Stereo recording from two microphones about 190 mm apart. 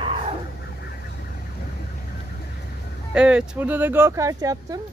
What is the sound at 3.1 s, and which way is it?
Speech, 5° right (ahead or behind).